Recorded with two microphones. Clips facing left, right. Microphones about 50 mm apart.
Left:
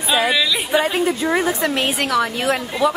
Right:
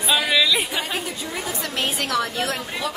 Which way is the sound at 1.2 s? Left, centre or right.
Left.